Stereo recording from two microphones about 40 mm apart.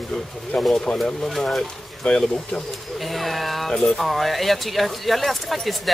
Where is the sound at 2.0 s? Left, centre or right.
Left.